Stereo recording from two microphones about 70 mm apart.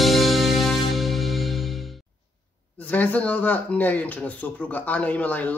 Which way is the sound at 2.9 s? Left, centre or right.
Left.